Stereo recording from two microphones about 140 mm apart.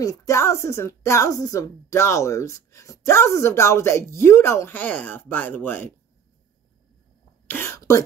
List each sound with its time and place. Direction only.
0.0 s speech: 25° left (ahead or behind)
7.4 s speech: 15° left (ahead or behind)